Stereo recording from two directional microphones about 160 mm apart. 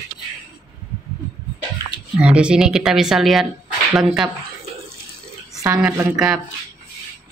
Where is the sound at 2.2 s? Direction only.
5° right (ahead or behind).